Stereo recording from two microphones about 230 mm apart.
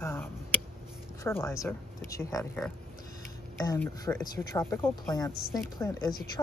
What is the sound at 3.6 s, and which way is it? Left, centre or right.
Speech, centre.